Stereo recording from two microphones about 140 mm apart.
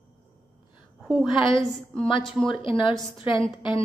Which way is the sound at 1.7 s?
5° left (ahead or behind).